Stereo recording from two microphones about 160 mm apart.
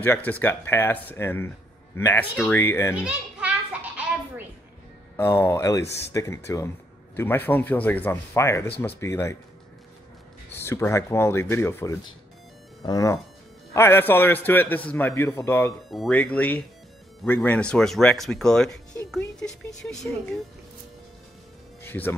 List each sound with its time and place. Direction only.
0.0 s a man's voice: 10° left (ahead or behind)
3.0 s children playing: 5° right (ahead or behind)
5.1 s a man's voice: 15° left (ahead or behind)
10.5 s a man's voice: 15° left (ahead or behind)
15.9 s a man's voice: centre (ahead or behind)
21.8 s speech: 10° left (ahead or behind)